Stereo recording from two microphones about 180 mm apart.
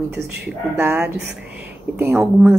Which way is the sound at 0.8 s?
5° right (ahead or behind).